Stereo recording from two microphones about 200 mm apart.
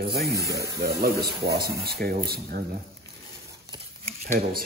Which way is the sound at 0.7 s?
50° right (ahead or behind).